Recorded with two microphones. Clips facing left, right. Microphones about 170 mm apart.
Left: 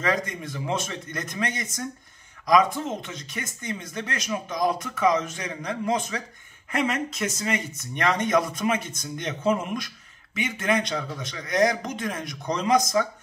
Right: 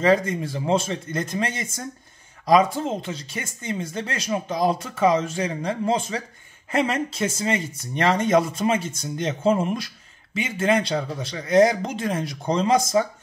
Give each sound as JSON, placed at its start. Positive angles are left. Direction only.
{"t": 0.0, "sound": "speech", "side_deg": -25}